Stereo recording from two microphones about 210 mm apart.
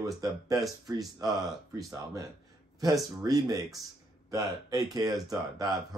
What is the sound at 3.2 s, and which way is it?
Speech, 15° right (ahead or behind).